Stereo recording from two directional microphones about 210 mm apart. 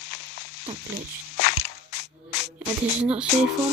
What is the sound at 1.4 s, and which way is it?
Crushing, 50° left (ahead or behind).